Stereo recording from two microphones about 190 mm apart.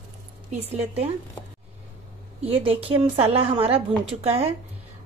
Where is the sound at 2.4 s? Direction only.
30° right (ahead or behind).